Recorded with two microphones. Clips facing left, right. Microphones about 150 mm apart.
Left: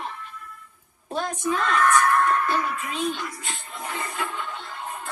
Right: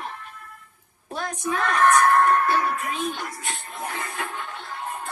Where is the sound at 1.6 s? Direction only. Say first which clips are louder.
Right 3 dB; 55° right (ahead or behind).